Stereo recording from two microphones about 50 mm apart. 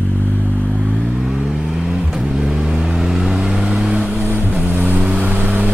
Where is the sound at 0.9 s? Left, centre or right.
Centre.